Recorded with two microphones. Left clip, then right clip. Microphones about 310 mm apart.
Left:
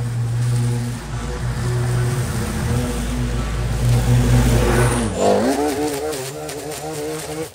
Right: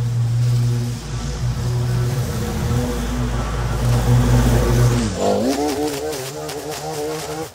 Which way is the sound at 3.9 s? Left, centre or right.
Centre.